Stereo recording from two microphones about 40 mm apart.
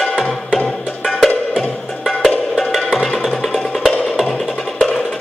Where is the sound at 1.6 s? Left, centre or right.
Centre.